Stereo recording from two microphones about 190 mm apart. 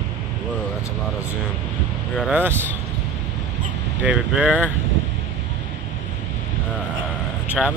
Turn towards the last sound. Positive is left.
turn(degrees=0)  # may be behind; listen again after turning